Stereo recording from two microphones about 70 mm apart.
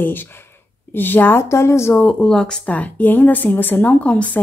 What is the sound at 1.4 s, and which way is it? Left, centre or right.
Speech, left.